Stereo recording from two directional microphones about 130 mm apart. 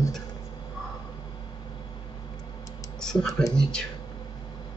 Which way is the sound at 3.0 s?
5° left (ahead or behind).